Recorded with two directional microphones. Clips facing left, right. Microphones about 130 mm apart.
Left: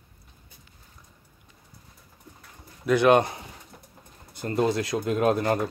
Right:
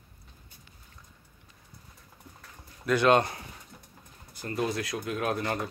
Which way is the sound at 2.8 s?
15° left (ahead or behind).